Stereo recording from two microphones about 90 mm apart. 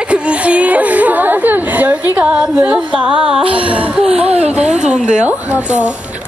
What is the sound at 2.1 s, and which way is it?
Music, 10° right (ahead or behind).